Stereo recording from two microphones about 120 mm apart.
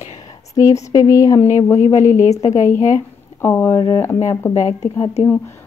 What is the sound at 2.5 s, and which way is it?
Speech, 25° left (ahead or behind).